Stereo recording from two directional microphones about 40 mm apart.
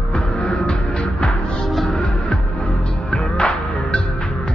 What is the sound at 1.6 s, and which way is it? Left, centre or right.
Music, centre.